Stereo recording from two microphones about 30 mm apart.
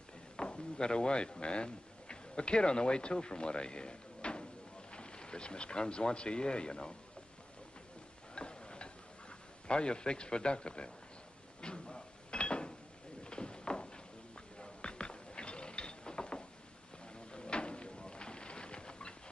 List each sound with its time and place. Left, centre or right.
0.4 s speech: left
8.4 s tick-tock: left
9.7 s speech: left
11.6 s a sound: left
14.6 s mechanisms: left
17.3 s a sound: left